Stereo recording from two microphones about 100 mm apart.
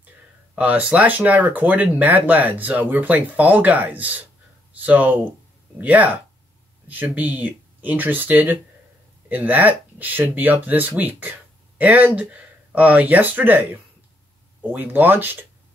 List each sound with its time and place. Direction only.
0.6 s speech: 15° right (ahead or behind)
14.7 s speech: 20° right (ahead or behind)